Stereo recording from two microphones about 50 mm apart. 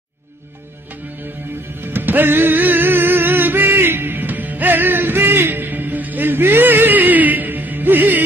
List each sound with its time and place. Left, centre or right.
1.8 s music: right